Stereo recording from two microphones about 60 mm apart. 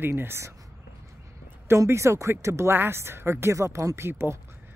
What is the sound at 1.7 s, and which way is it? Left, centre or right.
Speech, right.